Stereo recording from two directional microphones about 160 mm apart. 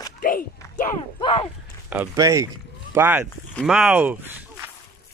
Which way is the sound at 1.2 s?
30° left (ahead or behind).